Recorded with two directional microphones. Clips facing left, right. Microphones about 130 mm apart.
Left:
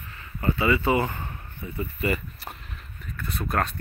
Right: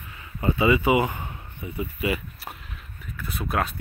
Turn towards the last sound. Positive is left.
turn(degrees=-5)  # may be behind; listen again after turning